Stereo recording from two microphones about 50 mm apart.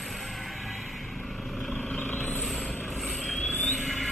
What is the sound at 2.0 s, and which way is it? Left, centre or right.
Vehicle, left.